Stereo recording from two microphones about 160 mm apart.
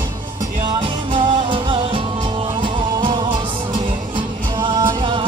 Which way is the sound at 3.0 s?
30° right (ahead or behind).